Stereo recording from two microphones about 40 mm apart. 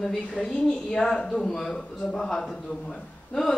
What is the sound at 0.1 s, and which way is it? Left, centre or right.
Speech, centre.